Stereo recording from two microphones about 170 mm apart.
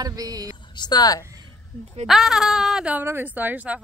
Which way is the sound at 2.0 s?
Centre (ahead or behind).